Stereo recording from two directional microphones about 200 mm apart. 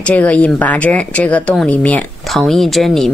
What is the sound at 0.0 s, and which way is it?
Speech, 5° left (ahead or behind).